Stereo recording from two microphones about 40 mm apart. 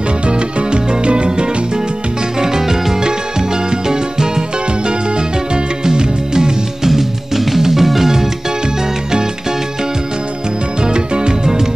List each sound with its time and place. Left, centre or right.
0.3 s music: right
6.9 s music: centre
10.8 s music: right